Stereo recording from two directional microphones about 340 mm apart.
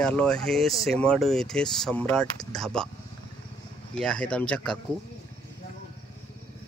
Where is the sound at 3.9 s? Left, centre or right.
Centre.